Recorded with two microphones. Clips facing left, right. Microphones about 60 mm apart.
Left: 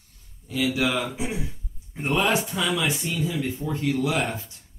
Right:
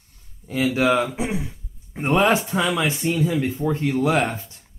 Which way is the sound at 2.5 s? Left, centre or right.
Right.